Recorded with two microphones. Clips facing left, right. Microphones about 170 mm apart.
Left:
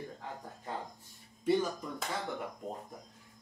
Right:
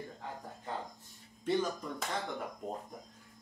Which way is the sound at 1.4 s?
10° left (ahead or behind).